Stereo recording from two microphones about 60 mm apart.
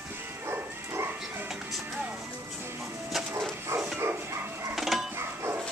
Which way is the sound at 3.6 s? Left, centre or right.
Right.